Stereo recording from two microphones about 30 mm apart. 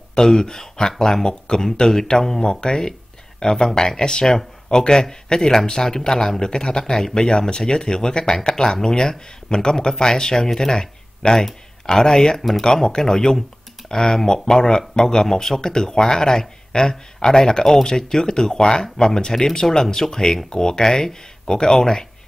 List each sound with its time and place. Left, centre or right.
0.1 s speech: left
12.4 s speech: centre
13.0 s speech: left